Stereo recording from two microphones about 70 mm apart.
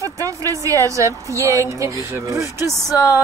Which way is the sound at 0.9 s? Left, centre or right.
Right.